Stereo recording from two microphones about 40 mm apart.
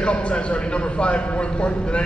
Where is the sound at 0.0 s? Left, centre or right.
Left.